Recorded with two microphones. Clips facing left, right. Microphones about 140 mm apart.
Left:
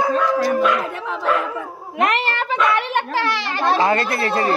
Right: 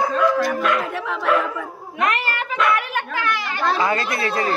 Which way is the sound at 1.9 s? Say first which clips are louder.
Left 3 dB; 25° left (ahead or behind).